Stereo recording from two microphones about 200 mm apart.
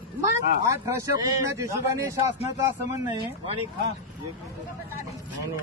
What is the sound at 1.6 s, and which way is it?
Speech, 15° right (ahead or behind).